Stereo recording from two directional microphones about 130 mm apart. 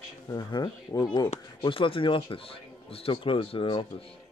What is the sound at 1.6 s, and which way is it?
Speech, 40° left (ahead or behind).